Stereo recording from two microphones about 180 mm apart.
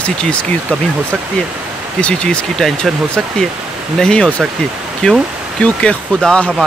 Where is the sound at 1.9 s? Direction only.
5° left (ahead or behind).